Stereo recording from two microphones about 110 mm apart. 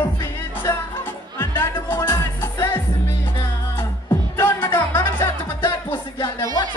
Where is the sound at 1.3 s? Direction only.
20° left (ahead or behind).